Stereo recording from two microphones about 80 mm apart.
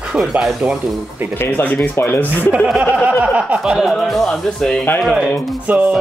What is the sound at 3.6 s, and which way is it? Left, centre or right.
Speech, centre.